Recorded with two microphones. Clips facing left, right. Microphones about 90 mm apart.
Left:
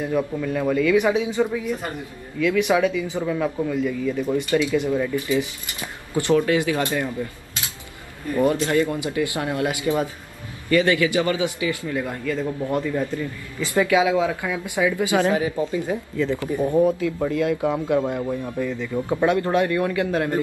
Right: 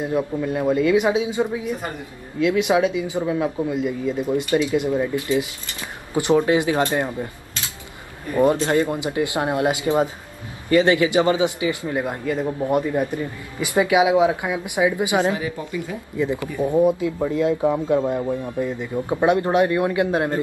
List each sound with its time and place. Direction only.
0.0 s a man's voice: 20° right (ahead or behind)
8.3 s a man's voice: 25° right (ahead or behind)
15.3 s speech: 30° left (ahead or behind)
16.2 s a man's voice: 15° right (ahead or behind)